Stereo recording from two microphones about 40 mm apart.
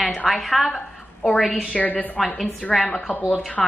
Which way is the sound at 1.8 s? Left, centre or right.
Left.